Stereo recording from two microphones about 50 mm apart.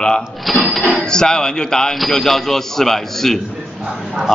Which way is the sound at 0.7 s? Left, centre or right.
Centre.